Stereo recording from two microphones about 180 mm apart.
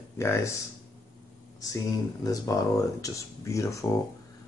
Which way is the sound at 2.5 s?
20° left (ahead or behind).